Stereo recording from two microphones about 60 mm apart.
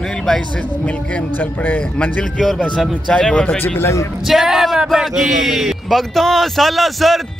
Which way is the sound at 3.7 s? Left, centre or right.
Left.